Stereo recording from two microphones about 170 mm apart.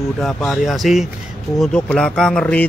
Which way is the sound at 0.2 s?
5° left (ahead or behind).